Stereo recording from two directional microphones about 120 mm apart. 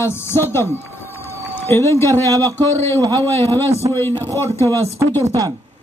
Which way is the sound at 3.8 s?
45° right (ahead or behind).